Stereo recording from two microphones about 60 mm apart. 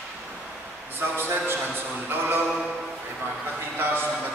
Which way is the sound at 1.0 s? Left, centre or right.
Right.